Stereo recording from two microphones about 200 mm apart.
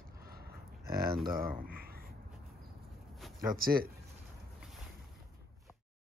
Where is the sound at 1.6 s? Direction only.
50° right (ahead or behind).